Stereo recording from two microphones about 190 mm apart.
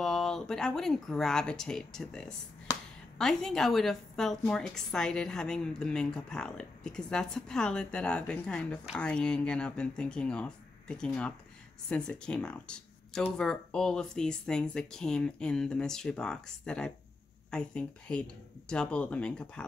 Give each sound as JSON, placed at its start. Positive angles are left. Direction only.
{"t": 0.0, "sound": "a woman's voice", "side_deg": 0}
{"t": 2.7, "sound": "a sound", "side_deg": 20}
{"t": 3.2, "sound": "a woman's voice", "side_deg": 0}